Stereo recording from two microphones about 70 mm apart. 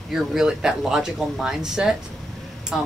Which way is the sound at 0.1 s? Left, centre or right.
Centre.